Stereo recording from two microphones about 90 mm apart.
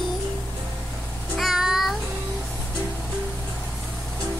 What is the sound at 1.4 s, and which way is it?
Child singing, centre (ahead or behind).